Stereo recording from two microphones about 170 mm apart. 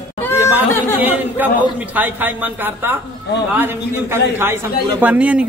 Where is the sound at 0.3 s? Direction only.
15° left (ahead or behind).